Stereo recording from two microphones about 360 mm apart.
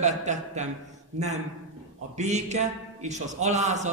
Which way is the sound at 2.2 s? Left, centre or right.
Centre.